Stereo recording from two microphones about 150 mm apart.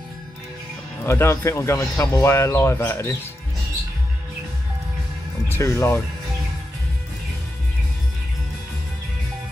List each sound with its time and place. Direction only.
1.0 s speech: 20° left (ahead or behind)
5.5 s speech: 20° left (ahead or behind)